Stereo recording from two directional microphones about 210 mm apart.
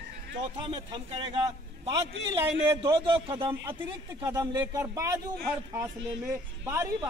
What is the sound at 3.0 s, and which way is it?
A man's voice, 25° right (ahead or behind).